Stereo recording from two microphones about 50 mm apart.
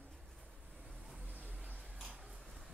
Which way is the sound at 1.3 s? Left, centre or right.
Right.